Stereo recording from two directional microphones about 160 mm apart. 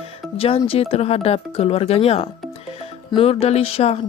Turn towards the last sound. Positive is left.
turn(degrees=40)  # may be behind; listen again after turning